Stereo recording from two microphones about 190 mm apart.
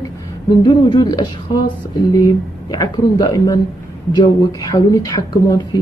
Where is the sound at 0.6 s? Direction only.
25° left (ahead or behind).